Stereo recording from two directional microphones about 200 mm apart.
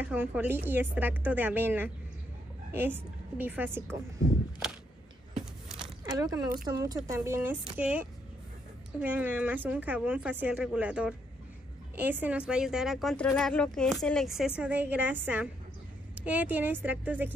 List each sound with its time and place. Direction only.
0.0 s speech: 10° right (ahead or behind)
4.6 s a sound: centre (ahead or behind)
6.0 s a woman's voice: 20° right (ahead or behind)